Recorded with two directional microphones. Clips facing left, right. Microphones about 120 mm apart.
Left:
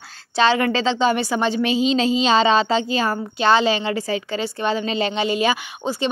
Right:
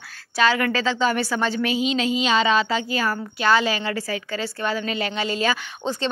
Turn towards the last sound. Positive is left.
turn(degrees=10)  # may be behind; listen again after turning